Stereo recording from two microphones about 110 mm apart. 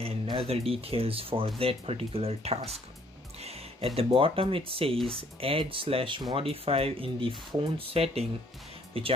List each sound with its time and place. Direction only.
0.3 s speech: 60° right (ahead or behind)
4.9 s speech: 5° left (ahead or behind)
5.4 s speech: 55° right (ahead or behind)